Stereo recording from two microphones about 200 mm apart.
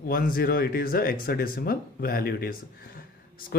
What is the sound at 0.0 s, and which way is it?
Speech, 45° left (ahead or behind).